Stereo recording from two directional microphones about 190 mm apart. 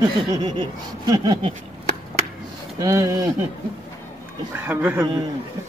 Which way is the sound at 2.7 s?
15° right (ahead or behind).